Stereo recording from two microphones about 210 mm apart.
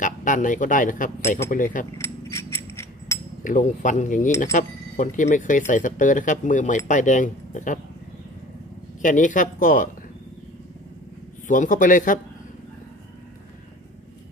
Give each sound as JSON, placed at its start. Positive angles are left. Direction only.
{"t": 0.0, "sound": "speech", "side_deg": 40}
{"t": 2.0, "sound": "mechanisms", "side_deg": 15}
{"t": 3.4, "sound": "speech", "side_deg": 35}
{"t": 9.0, "sound": "speech", "side_deg": 35}
{"t": 11.4, "sound": "speech", "side_deg": 40}